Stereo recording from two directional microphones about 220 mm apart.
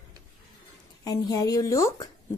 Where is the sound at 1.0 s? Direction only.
15° left (ahead or behind).